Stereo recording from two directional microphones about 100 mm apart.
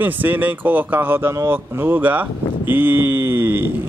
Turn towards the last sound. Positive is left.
turn(degrees=-20)  # may be behind; listen again after turning